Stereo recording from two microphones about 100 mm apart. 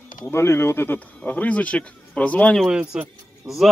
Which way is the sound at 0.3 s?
25° left (ahead or behind).